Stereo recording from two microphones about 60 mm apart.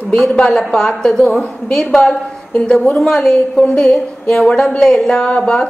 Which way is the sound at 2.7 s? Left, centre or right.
Left.